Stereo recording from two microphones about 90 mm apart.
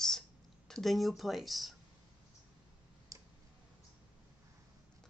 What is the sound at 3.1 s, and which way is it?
Clicking, 40° right (ahead or behind).